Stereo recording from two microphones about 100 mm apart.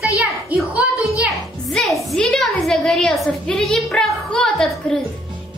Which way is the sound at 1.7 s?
Centre (ahead or behind).